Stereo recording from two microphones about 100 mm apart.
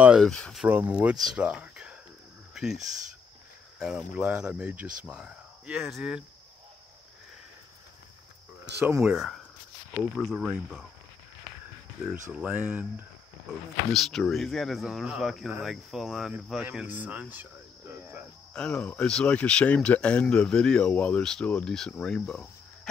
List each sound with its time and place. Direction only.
0.2 s speech: 5° left (ahead or behind)
0.7 s speech: 15° right (ahead or behind)
3.8 s speech: 10° right (ahead or behind)
9.0 s speech: 5° right (ahead or behind)
12.0 s speech: 15° right (ahead or behind)
13.5 s speech: centre (ahead or behind)
16.8 s speech: 15° right (ahead or behind)
18.5 s speech: 10° left (ahead or behind)